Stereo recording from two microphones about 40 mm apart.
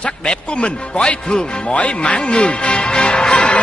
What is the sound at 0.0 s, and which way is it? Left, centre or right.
A woman's voice, left.